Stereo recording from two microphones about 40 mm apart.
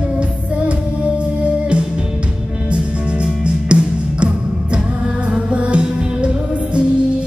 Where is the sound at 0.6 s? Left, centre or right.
Right.